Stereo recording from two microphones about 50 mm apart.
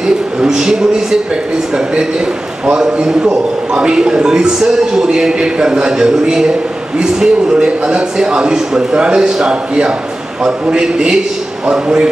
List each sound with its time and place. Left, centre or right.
0.4 s a man's voice: centre
2.8 s a man's voice: centre